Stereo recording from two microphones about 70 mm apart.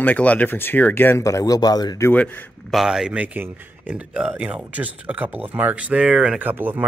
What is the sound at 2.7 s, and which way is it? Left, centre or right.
Speech, centre.